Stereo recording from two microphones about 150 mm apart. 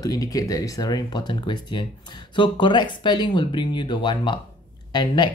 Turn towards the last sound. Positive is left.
turn(degrees=30)  # may be behind; listen again after turning